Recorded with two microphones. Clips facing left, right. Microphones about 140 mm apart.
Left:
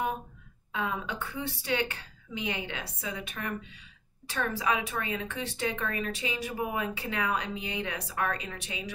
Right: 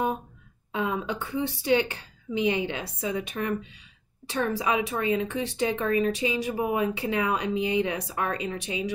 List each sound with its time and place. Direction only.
0.7 s a woman's voice: 25° right (ahead or behind)